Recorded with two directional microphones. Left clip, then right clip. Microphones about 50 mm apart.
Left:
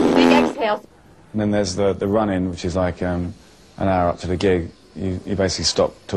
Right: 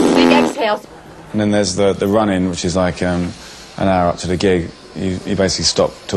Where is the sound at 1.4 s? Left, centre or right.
Left.